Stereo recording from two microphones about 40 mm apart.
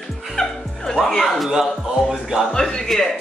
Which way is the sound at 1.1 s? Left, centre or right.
Centre.